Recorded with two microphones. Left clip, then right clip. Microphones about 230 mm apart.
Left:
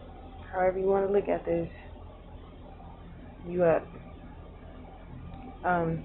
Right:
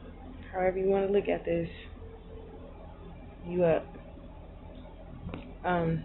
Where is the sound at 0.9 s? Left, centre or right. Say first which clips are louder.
Left 1 dB; centre.